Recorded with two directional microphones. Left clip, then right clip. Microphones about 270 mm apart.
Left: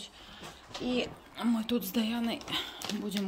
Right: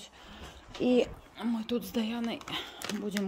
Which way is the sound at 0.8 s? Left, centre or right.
Right.